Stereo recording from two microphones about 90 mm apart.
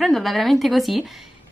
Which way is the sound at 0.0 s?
Centre (ahead or behind).